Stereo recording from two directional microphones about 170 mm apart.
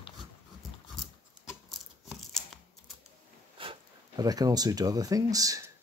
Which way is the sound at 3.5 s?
30° right (ahead or behind).